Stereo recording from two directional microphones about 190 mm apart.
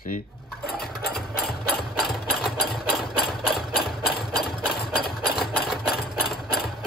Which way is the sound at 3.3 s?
Centre (ahead or behind).